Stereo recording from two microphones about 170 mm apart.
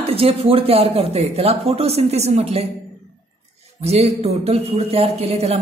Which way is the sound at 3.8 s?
35° right (ahead or behind).